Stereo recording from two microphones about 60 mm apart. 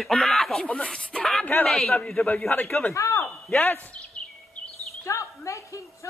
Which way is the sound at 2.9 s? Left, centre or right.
Left.